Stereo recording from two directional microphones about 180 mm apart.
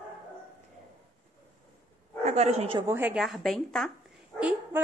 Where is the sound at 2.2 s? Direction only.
40° right (ahead or behind).